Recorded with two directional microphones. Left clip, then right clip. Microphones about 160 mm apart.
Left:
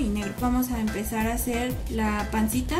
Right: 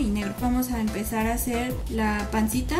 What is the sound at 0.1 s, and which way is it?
A woman's voice, centre (ahead or behind).